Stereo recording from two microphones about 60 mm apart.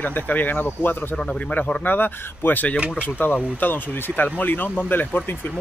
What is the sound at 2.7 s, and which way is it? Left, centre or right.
Speech, right.